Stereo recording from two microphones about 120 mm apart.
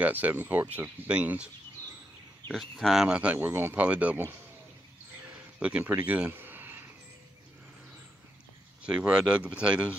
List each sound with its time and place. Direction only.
0.0 s speech: 15° right (ahead or behind)
2.5 s speech: centre (ahead or behind)
5.6 s speech: 10° right (ahead or behind)
8.8 s speech: 10° right (ahead or behind)